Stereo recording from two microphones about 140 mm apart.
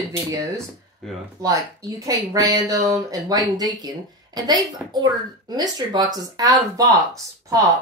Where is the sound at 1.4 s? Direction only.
25° right (ahead or behind).